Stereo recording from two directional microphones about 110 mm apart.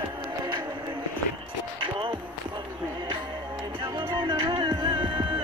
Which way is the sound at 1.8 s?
50° right (ahead or behind).